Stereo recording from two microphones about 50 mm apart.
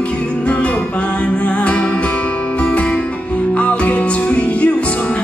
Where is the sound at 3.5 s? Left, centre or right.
Left.